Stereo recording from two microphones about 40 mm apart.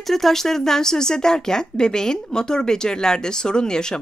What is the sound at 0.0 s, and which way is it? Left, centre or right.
A woman's voice, centre.